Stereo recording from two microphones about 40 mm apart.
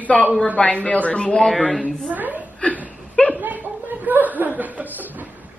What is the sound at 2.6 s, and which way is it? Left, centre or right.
Speech, left.